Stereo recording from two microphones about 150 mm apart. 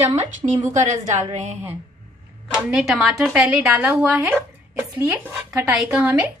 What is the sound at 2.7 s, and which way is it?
A woman's voice, 5° right (ahead or behind).